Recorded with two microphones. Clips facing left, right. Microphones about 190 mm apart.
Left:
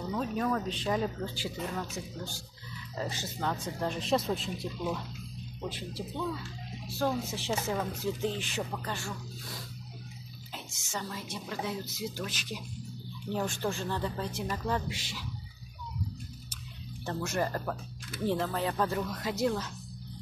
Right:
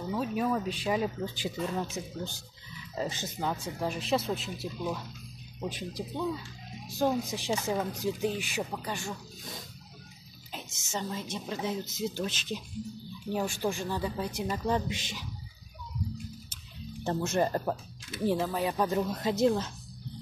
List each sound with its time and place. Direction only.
0.1 s speech: 10° right (ahead or behind)
5.7 s speech: 15° right (ahead or behind)
10.5 s a woman's voice: 20° right (ahead or behind)
13.3 s a woman's voice: 10° right (ahead or behind)
17.0 s speech: 25° right (ahead or behind)
18.2 s speech: 10° right (ahead or behind)
18.9 s a woman's voice: 30° right (ahead or behind)